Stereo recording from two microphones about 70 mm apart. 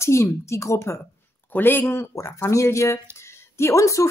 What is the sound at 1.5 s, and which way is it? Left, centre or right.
A woman's voice, left.